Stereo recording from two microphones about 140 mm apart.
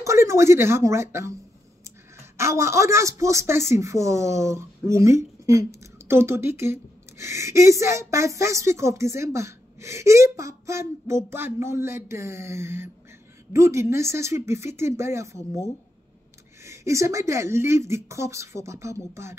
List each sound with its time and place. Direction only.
0.0 s speech: 20° right (ahead or behind)
2.3 s speech: 20° right (ahead or behind)
16.6 s speech: 20° right (ahead or behind)